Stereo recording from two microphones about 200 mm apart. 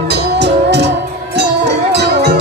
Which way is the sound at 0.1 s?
60° right (ahead or behind).